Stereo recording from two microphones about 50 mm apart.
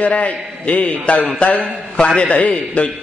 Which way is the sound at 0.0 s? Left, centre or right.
Left.